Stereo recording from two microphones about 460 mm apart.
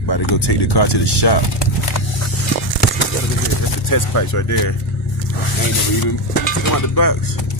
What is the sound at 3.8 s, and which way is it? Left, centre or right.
Speech, left.